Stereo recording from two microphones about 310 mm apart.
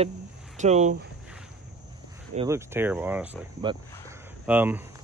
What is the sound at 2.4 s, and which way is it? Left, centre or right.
Speech, centre.